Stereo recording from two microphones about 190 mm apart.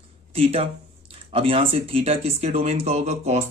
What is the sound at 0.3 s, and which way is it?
Speech, 30° right (ahead or behind).